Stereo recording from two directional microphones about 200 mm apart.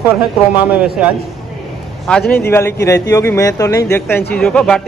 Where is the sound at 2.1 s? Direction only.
5° left (ahead or behind).